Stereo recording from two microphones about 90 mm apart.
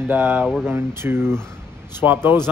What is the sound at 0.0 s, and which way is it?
Speech, 20° right (ahead or behind).